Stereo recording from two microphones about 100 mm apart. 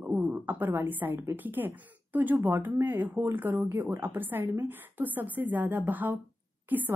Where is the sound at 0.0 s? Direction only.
15° right (ahead or behind).